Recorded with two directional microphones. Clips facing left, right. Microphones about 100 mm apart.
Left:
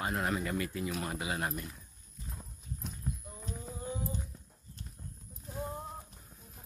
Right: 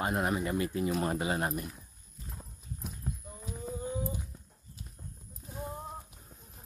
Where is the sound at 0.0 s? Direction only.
20° right (ahead or behind); by 1.5 s 35° right (ahead or behind).